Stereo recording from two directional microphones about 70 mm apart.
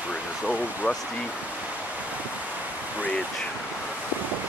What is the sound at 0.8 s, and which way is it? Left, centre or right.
Speech, left.